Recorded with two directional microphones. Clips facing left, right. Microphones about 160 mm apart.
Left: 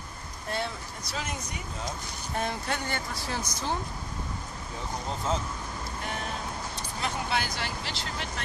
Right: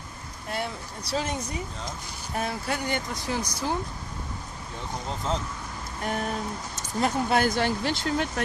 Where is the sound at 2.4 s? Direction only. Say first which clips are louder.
Right 2 dB; 5° right (ahead or behind).